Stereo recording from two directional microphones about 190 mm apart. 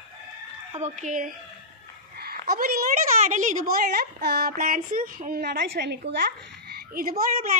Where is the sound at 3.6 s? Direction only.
55° right (ahead or behind).